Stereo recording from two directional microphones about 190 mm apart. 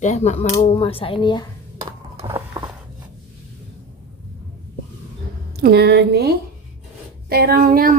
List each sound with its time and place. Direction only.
0.0 s speech: 40° left (ahead or behind)
2.1 s a sound: 15° right (ahead or behind)
5.6 s a woman's voice: 55° right (ahead or behind)